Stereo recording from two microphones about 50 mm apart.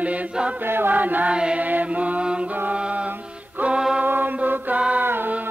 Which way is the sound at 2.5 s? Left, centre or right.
Right.